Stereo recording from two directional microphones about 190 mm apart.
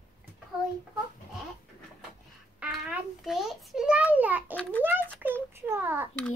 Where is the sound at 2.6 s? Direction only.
5° right (ahead or behind).